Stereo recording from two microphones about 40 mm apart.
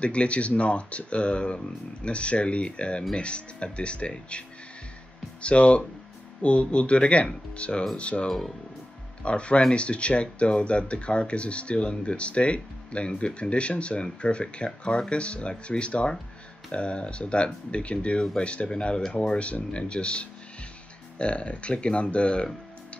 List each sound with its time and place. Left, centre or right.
0.0 s speech: left
8.3 s speech: centre
9.2 s speech: left